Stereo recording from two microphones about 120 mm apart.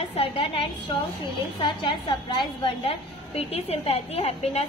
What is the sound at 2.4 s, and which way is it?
A woman's voice, 50° left (ahead or behind).